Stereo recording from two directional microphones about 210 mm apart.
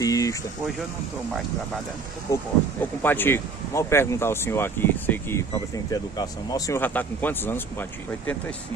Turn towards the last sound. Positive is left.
turn(degrees=10)  # may be behind; listen again after turning